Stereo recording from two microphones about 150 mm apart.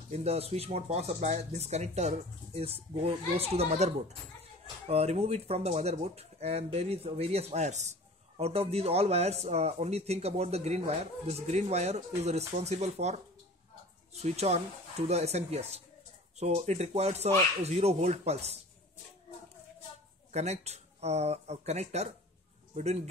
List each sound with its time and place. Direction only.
0.1 s speech: 45° right (ahead or behind)
20.2 s speech: 45° right (ahead or behind)